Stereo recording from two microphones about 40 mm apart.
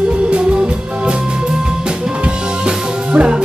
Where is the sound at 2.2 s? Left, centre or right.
Right.